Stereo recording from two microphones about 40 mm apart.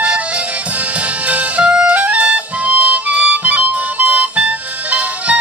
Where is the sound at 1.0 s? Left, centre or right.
Right.